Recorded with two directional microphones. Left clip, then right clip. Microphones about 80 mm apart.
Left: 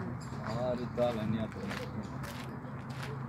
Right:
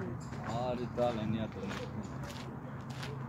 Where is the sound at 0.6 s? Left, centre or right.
Centre.